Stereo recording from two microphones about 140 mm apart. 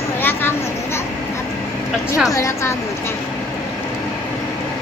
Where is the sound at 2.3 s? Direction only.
20° left (ahead or behind).